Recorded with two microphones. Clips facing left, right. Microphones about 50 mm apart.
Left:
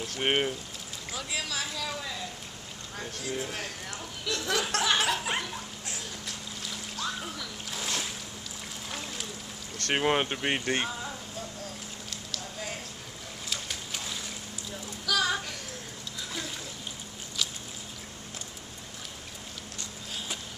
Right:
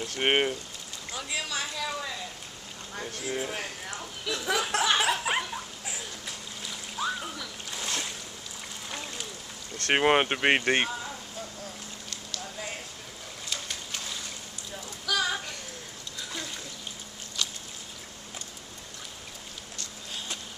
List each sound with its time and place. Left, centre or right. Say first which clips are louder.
0.1 s speech: right 3 dB; right
1.1 s a woman's voice: right 1 dB; centre
3.3 s speech: right 2 dB; centre
5.9 s splash: right 1 dB; centre
8.9 s a sound: right 1 dB; centre
9.9 s speech: right 4 dB; right
10.4 s speech: right 5 dB; right
13.5 s a sound: even; centre
15.0 s child singing: left 1 dB; centre
17.4 s a sound: even; centre